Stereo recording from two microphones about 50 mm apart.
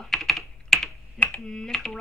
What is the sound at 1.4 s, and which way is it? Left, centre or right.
Speech, centre.